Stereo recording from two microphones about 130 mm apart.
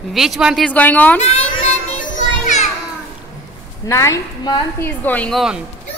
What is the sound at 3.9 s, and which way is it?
Speech, 25° left (ahead or behind).